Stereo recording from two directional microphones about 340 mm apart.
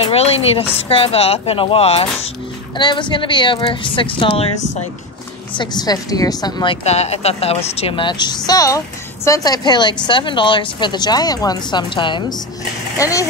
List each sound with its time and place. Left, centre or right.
0.0 s a woman's voice: centre